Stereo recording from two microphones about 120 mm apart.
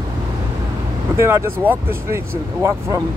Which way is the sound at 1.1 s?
20° right (ahead or behind).